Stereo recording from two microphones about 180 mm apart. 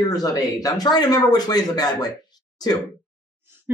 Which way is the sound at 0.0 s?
20° left (ahead or behind).